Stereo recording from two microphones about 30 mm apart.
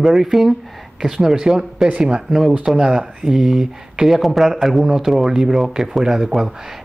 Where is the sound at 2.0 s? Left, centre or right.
Right.